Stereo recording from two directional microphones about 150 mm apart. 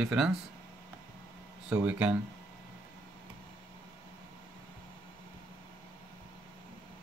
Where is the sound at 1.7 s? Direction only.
10° right (ahead or behind).